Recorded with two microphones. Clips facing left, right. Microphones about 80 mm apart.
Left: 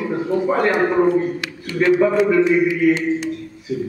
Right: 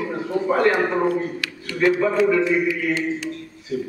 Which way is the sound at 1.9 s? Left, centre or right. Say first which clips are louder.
Left 4 dB; centre.